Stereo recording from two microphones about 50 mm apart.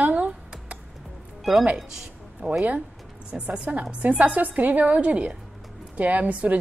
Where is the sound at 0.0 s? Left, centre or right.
Right.